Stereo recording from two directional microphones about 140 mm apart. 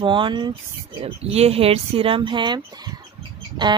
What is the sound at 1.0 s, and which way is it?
Speech, 50° right (ahead or behind).